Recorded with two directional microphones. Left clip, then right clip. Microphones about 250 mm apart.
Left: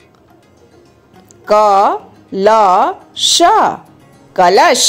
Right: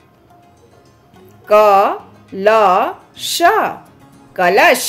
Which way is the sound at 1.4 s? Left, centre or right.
Centre.